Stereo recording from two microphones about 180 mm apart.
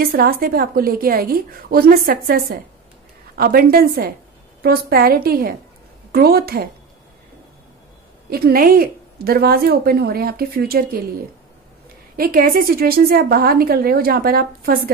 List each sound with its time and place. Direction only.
0.0 s a woman's voice: 55° right (ahead or behind)
8.3 s a woman's voice: 60° right (ahead or behind)
12.2 s a woman's voice: 55° right (ahead or behind)